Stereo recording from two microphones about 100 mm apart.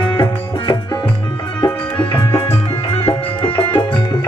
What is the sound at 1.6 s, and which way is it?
Music, 60° left (ahead or behind).